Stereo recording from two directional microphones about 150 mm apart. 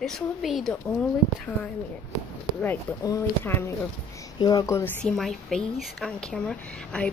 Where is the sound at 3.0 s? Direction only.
25° left (ahead or behind).